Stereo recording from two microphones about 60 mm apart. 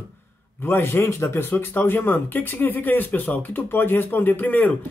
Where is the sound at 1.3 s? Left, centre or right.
Left.